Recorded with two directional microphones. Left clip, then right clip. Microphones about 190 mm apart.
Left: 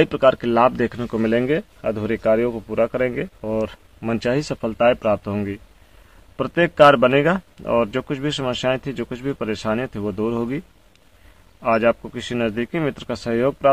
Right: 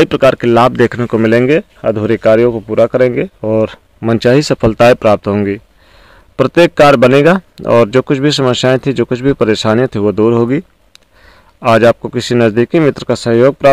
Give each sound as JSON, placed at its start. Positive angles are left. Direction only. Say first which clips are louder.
{"t": 0.0, "sound": "a man's voice", "louder": "right 7 dB", "side_deg": -35}
{"t": 11.6, "sound": "a man's voice", "louder": "right 10 dB", "side_deg": -40}